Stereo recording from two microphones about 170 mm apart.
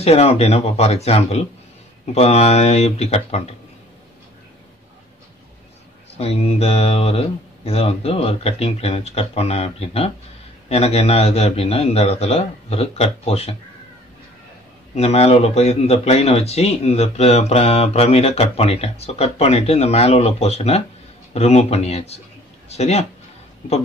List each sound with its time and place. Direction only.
0.0 s speech: 35° left (ahead or behind)
6.1 s speech: 35° left (ahead or behind)
15.0 s speech: 35° left (ahead or behind)